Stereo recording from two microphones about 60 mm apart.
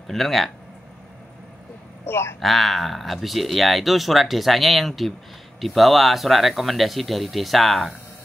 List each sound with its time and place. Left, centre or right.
0.0 s speech: centre
2.0 s a man's voice: left
2.4 s speech: centre